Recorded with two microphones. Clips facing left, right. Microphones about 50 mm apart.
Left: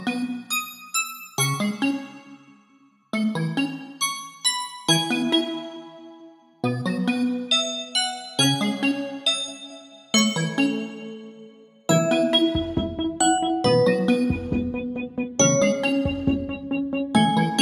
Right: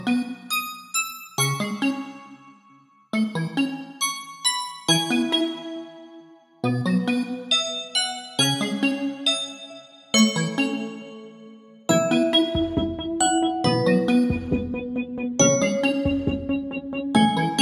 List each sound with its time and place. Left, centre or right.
0.0 s music: centre
3.1 s music: centre
6.6 s music: centre
8.9 s music: centre
10.1 s music: centre
11.9 s music: centre